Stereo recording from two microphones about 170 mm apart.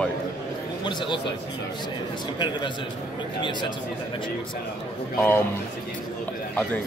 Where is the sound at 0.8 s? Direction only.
30° left (ahead or behind).